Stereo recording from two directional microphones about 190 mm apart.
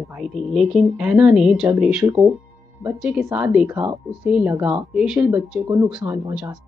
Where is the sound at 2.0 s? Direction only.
20° right (ahead or behind).